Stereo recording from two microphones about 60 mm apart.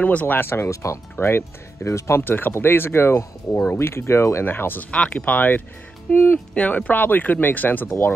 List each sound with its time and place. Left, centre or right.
0.0 s speech: left
0.4 s speech: left
1.1 s speech: left
2.2 s speech: left
4.9 s speech: left
6.5 s speech: left